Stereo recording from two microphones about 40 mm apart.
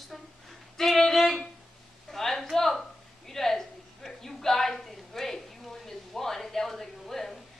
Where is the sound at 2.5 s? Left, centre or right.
Centre.